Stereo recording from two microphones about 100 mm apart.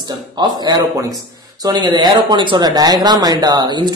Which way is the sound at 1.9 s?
50° right (ahead or behind).